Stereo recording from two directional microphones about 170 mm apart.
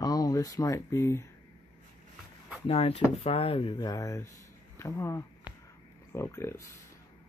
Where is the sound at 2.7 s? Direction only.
35° left (ahead or behind); by 6.7 s 15° left (ahead or behind).